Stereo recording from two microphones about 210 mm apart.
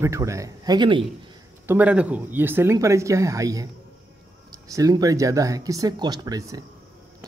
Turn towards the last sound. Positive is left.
turn(degrees=-15)  # may be behind; listen again after turning